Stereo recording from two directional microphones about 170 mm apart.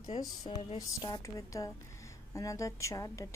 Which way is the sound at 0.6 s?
35° left (ahead or behind).